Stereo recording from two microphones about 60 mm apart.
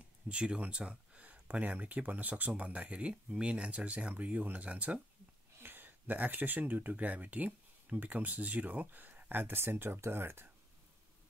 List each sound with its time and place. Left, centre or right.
0.3 s speech: centre
5.6 s speech: right